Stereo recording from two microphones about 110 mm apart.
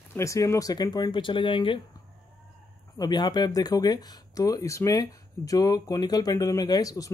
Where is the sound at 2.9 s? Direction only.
40° left (ahead or behind).